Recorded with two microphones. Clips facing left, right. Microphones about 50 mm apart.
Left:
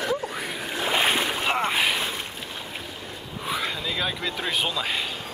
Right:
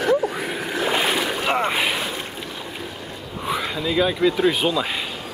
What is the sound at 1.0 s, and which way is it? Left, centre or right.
Boat, left.